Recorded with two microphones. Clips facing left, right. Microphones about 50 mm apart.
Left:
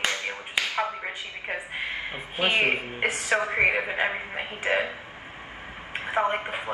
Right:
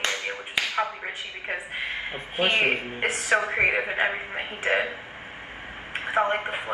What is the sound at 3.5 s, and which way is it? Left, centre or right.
Speech, centre.